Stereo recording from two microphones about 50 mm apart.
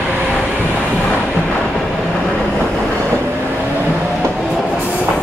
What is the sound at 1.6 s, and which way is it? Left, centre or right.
Vehicle, centre.